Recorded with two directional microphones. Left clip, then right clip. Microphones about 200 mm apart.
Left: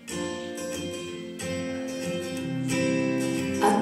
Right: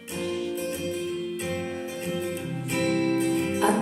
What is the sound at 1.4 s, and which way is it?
Music, 50° left (ahead or behind).